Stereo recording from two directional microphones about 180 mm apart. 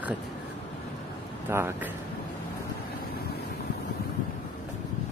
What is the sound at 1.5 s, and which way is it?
Speech, 15° right (ahead or behind).